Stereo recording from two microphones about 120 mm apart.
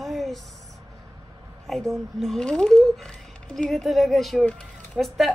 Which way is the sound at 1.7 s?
Centre (ahead or behind).